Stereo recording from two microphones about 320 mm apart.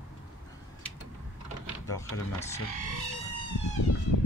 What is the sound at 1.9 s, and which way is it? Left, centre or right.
Speech, centre.